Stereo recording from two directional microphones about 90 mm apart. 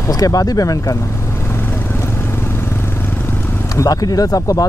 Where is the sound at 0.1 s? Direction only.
45° left (ahead or behind).